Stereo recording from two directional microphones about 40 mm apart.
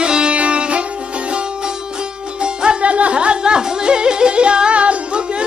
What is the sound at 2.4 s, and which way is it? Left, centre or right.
Music, right.